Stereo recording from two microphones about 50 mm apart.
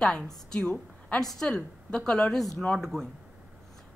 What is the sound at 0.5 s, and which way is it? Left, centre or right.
Speech, centre.